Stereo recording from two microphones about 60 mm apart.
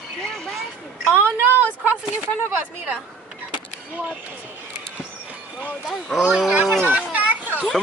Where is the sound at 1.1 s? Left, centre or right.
Right.